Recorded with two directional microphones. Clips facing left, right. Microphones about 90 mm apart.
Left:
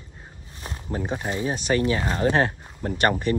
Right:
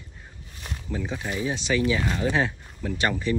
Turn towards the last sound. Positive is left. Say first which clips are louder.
# left 3 dB
turn(degrees=55)  # may be behind; listen again after turning